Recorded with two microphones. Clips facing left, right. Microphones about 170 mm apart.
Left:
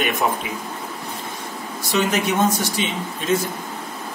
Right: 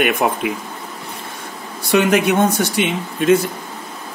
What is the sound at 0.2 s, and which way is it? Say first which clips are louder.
Speech: right 3 dB; 60° right (ahead or behind).